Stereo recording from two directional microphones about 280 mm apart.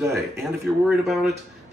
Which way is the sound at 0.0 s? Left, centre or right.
Centre.